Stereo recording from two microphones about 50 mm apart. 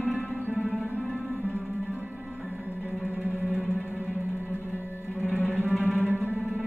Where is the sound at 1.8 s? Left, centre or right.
Right.